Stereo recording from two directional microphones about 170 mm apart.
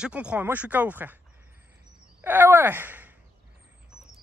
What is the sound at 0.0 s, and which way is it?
Speech, 5° right (ahead or behind).